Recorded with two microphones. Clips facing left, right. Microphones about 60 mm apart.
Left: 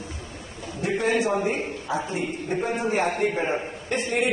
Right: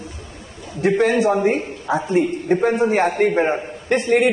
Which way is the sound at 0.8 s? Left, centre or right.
Right.